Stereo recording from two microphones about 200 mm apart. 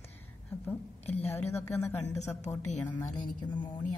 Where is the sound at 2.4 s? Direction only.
35° left (ahead or behind).